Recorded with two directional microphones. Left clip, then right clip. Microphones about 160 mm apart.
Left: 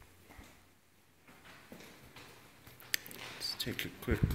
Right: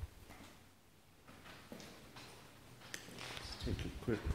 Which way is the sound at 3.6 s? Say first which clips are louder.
Left 6 dB; 15° left (ahead or behind).